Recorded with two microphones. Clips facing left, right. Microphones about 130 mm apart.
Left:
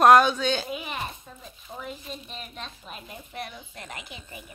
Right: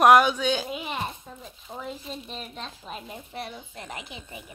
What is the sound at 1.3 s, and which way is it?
Speech, 15° right (ahead or behind).